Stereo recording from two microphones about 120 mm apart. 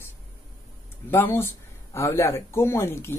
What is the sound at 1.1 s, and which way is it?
Speech, 20° left (ahead or behind).